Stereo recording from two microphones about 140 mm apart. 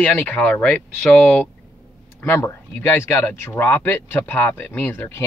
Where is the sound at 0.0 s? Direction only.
15° left (ahead or behind).